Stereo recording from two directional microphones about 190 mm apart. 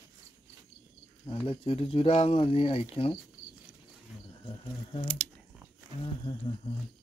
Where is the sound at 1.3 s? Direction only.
30° left (ahead or behind).